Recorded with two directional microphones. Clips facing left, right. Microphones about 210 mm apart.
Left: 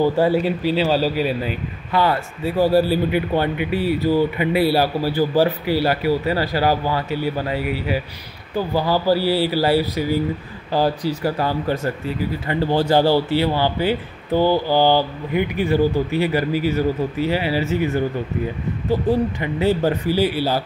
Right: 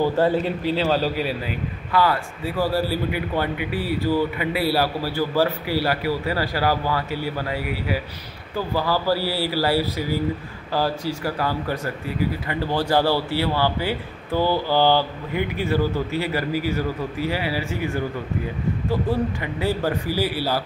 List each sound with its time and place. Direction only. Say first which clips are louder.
0.0 s a man's voice: left 3 dB; 10° left (ahead or behind)
1.9 s a man's voice: left 2 dB; 25° left (ahead or behind)